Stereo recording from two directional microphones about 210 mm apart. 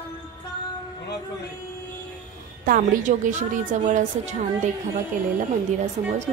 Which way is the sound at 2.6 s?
40° right (ahead or behind).